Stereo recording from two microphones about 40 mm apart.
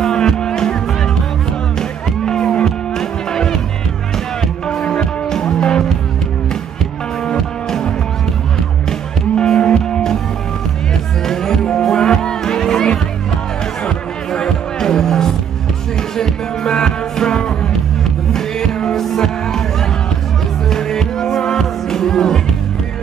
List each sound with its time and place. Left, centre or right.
0.0 s music: centre
1.8 s music: centre
4.8 s music: left
9.4 s music: left
11.2 s music: centre
20.7 s music: centre